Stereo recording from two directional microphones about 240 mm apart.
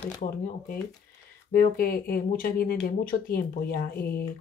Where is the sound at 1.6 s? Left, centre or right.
Left.